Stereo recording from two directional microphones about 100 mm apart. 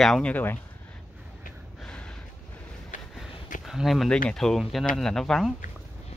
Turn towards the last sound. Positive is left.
turn(degrees=5)  # may be behind; listen again after turning